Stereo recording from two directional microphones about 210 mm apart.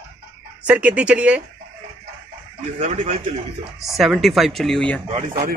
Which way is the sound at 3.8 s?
Centre (ahead or behind).